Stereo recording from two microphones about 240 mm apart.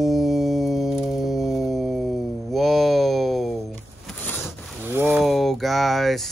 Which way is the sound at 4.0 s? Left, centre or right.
Centre.